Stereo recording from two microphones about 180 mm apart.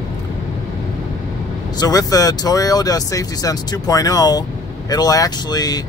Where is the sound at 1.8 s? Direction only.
20° left (ahead or behind).